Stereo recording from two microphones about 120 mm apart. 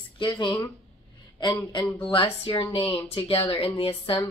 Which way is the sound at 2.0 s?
45° left (ahead or behind).